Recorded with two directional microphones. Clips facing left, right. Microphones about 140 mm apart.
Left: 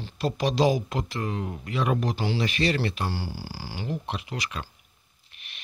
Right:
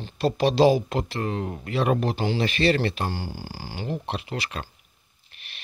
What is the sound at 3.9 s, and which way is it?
Speech, 30° right (ahead or behind).